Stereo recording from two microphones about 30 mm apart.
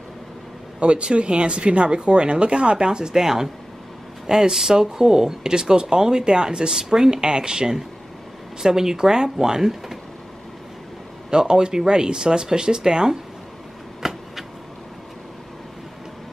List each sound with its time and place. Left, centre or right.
0.7 s speech: right
3.2 s speech: centre
11.2 s speech: right
14.0 s a sound: centre